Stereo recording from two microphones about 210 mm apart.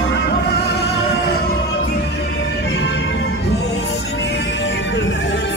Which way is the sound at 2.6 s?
55° left (ahead or behind).